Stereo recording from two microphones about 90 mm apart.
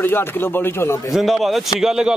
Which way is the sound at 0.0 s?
25° left (ahead or behind).